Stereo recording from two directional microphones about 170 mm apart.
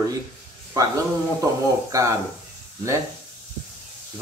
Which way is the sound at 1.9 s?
20° right (ahead or behind).